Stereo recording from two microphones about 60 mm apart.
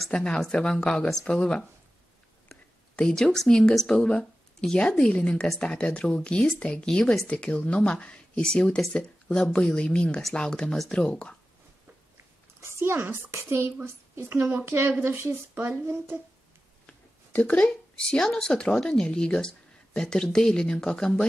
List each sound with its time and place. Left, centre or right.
0.1 s speech: centre
12.5 s a woman's voice: right
16.8 s a sound: left
17.6 s speech: centre